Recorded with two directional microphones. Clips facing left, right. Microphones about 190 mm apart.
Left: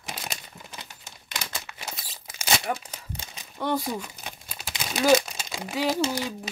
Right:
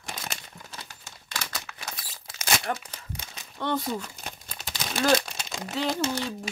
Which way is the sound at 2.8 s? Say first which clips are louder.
Left 2 dB; 20° left (ahead or behind).